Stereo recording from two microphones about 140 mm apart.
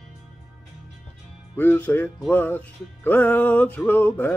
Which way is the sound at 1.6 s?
15° left (ahead or behind).